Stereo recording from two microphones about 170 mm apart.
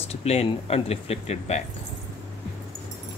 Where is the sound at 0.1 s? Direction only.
40° left (ahead or behind).